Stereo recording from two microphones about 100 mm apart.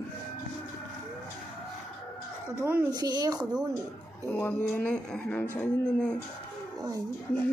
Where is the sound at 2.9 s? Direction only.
40° right (ahead or behind).